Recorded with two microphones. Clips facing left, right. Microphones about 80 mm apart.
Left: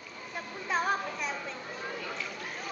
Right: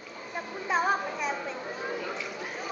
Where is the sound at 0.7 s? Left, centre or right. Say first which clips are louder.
Right 3 dB; centre.